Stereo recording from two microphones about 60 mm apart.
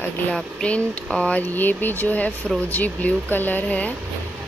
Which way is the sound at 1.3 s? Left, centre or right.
Left.